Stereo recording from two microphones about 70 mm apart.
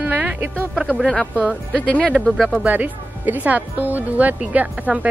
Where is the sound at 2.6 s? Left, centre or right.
Right.